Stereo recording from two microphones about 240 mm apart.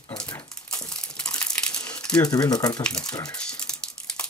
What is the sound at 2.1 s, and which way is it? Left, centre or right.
Speech, centre.